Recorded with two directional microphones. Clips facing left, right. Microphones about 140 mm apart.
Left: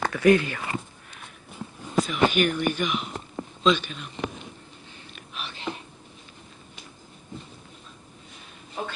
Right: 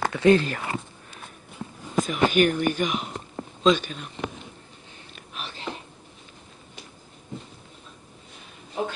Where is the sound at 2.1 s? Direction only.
40° right (ahead or behind).